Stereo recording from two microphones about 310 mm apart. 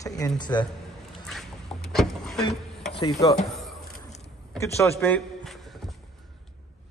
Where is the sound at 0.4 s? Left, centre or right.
Centre.